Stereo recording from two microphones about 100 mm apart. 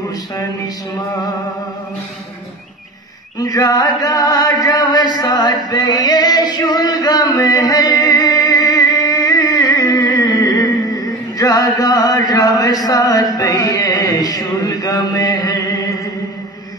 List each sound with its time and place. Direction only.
3.3 s chant: 40° left (ahead or behind)